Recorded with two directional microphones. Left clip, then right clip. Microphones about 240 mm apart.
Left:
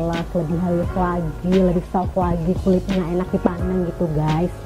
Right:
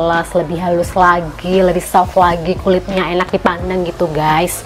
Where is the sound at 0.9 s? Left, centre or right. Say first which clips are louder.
Right 12 dB; centre.